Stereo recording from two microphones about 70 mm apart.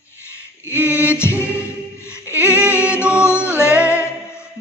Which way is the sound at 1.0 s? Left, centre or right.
Left.